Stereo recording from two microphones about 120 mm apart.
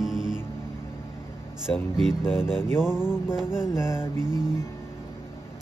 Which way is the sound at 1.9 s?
5° right (ahead or behind).